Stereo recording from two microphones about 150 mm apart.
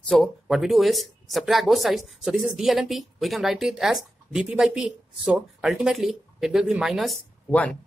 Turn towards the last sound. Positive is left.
turn(degrees=0)  # may be behind; listen again after turning